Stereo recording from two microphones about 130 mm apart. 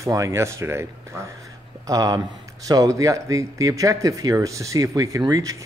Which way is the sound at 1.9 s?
30° right (ahead or behind).